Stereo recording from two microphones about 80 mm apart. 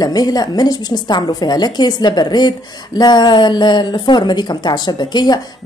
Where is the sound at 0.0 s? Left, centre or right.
Left.